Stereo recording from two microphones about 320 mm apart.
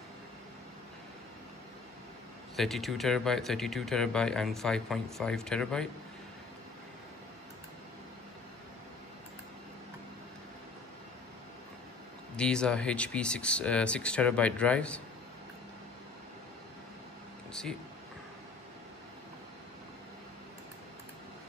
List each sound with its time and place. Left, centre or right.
2.5 s speech: centre
12.4 s speech: centre
17.5 s a sound: centre